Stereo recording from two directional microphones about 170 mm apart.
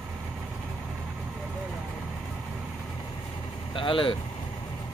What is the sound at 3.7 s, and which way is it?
Speech, 30° left (ahead or behind).